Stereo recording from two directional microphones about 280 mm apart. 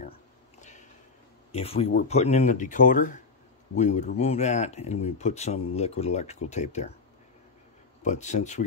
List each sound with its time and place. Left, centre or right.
0.6 s a sound: left
1.5 s speech: left
8.0 s speech: left